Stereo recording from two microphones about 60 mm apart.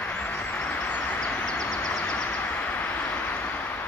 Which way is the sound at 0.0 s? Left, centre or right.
Left.